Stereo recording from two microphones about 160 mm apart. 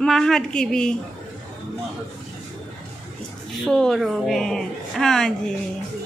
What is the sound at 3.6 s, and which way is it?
A woman's voice, 5° left (ahead or behind).